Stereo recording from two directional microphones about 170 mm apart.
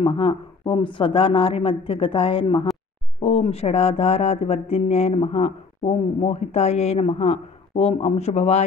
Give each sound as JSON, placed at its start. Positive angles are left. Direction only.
{"t": 0.0, "sound": "speech", "side_deg": 30}